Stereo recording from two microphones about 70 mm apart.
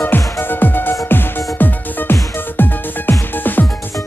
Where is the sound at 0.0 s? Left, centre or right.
Left.